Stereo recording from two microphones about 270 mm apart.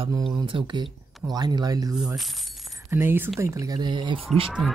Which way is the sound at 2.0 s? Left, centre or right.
Centre.